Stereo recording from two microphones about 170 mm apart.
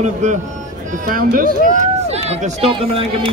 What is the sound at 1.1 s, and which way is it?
Speech, 55° right (ahead or behind).